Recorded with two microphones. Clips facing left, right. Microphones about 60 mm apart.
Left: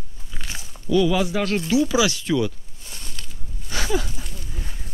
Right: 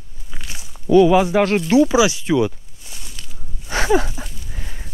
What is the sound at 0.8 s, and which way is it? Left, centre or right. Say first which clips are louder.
Speech: right 7 dB; right.